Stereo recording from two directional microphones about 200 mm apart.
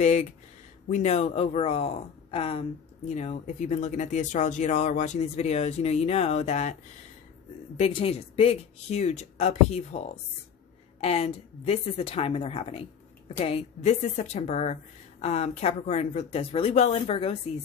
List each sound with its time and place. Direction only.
0.0 s a woman's voice: 35° left (ahead or behind)